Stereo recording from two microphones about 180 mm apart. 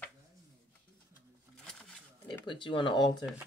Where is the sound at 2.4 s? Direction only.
25° left (ahead or behind).